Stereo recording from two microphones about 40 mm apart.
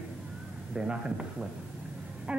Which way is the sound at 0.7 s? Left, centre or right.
Right.